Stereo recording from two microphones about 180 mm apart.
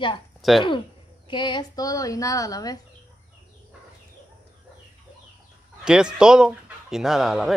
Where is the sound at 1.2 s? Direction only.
25° left (ahead or behind).